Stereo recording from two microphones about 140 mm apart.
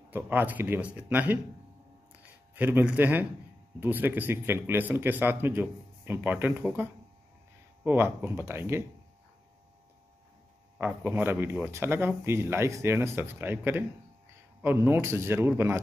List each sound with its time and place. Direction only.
0.1 s speech: 15° right (ahead or behind)
2.1 s a sound: 10° right (ahead or behind)
3.8 s speech: 15° right (ahead or behind)
10.8 s speech: 10° right (ahead or behind)